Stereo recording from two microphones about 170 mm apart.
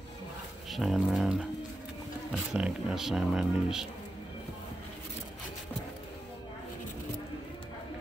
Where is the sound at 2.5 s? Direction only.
5° right (ahead or behind).